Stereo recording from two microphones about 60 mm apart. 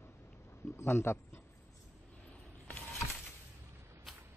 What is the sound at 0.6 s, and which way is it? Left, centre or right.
Speech, left.